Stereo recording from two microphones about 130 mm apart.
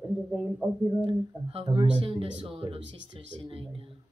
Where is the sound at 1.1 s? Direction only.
45° right (ahead or behind).